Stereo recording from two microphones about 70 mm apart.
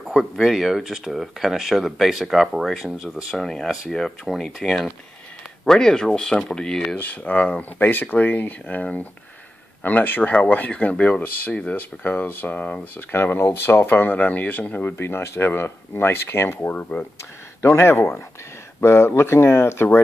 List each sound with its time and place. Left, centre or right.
0.1 s speech: centre
7.0 s speech: left
7.8 s speech: left
17.6 s speech: left